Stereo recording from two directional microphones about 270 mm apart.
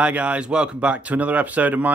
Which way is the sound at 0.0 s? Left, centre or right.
Centre.